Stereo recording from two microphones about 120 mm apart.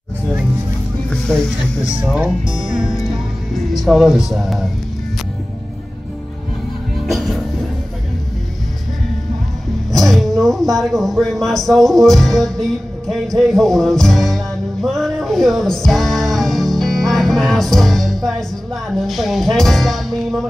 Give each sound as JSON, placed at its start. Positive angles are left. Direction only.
{"t": 1.1, "sound": "music", "side_deg": 5}
{"t": 2.7, "sound": "music", "side_deg": 0}
{"t": 7.1, "sound": "music", "side_deg": 0}
{"t": 9.9, "sound": "speech", "side_deg": 0}
{"t": 13.4, "sound": "music", "side_deg": 0}